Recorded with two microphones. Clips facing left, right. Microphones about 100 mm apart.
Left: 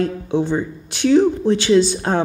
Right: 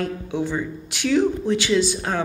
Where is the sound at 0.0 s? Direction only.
30° left (ahead or behind).